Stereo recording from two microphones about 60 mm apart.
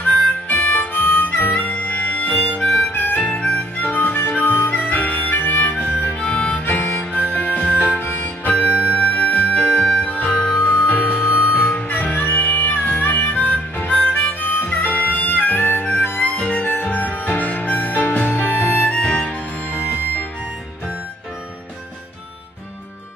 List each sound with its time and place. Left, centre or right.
0.5 s harmonica: left
6.3 s harmonica: centre
6.6 s harmonica: left
6.9 s harmonica: left
7.2 s music: left
7.6 s music: right
8.0 s music: left
9.7 s music: centre
10.9 s music: left
16.3 s harmonica: left
17.1 s music: left